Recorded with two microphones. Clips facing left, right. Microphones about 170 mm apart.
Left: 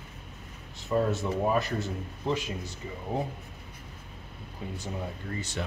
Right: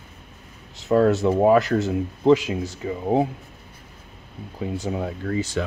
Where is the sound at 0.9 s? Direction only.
90° right.